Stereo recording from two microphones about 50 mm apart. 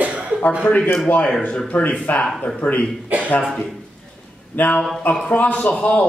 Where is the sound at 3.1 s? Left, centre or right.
Right.